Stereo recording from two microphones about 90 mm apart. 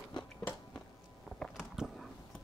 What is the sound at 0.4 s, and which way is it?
Walk, 15° left (ahead or behind).